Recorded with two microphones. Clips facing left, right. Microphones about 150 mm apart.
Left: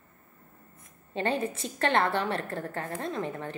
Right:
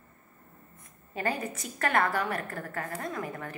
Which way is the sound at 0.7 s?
25° left (ahead or behind).